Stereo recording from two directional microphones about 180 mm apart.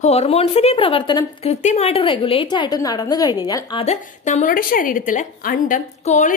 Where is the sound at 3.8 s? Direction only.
40° left (ahead or behind).